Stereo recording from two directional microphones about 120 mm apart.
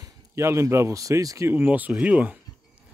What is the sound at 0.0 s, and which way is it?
Speech, 25° right (ahead or behind).